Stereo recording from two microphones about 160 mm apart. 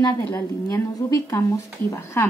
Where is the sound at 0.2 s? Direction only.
15° left (ahead or behind).